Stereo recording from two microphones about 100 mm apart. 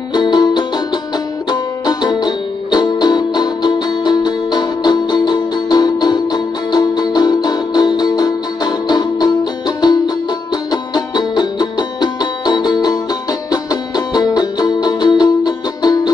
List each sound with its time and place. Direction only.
0.1 s music: 45° left (ahead or behind)